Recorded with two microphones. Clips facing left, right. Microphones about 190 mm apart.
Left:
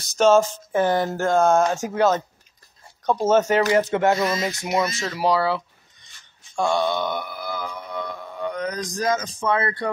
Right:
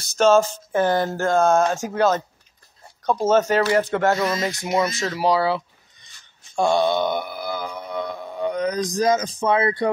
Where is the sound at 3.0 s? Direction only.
15° left (ahead or behind).